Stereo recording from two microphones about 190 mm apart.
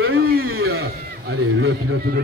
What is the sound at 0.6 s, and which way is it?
Speech, 55° right (ahead or behind).